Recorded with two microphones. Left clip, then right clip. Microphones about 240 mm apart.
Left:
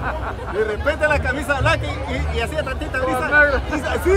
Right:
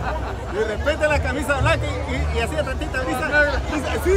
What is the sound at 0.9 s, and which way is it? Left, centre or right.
Speech, centre.